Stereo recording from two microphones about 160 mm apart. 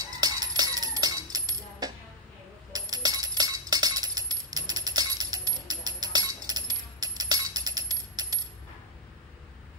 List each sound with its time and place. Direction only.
0.2 s music: 25° right (ahead or behind)
2.7 s coin: 25° right (ahead or behind)